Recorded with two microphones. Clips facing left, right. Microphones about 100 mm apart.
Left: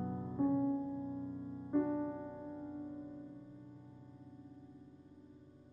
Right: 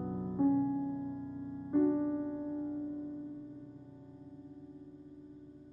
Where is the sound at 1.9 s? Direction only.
15° right (ahead or behind).